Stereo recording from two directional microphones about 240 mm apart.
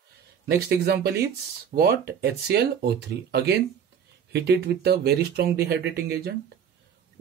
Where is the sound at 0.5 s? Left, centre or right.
Right.